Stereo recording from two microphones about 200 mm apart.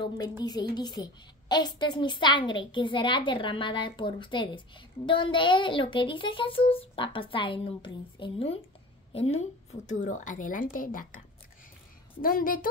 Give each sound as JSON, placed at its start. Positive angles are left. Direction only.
{"t": 0.4, "sound": "a woman's voice", "side_deg": 20}
{"t": 12.2, "sound": "a woman's voice", "side_deg": 45}